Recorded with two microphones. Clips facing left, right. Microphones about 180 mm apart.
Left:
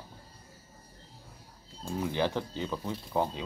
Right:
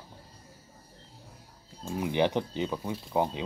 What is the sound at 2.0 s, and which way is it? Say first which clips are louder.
Speech: right 4 dB; 20° right (ahead or behind).